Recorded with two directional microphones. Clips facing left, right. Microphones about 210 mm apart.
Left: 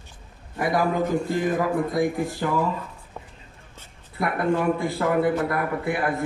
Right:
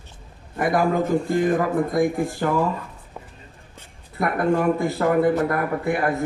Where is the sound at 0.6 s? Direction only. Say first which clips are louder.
Right 2 dB; 50° right (ahead or behind).